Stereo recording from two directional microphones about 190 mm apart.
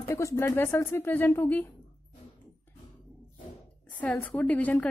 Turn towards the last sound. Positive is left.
turn(degrees=10)  # may be behind; listen again after turning